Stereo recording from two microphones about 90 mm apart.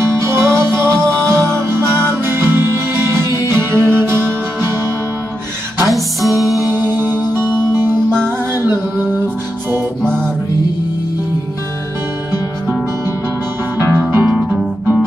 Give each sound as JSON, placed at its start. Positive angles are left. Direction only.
{"t": 0.0, "sound": "music", "side_deg": -30}
{"t": 5.9, "sound": "music", "side_deg": 0}
{"t": 6.6, "sound": "music", "side_deg": -25}
{"t": 13.7, "sound": "music", "side_deg": -30}
{"t": 14.2, "sound": "music", "side_deg": -15}